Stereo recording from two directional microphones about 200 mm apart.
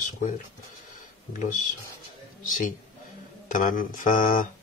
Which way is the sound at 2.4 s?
40° left (ahead or behind).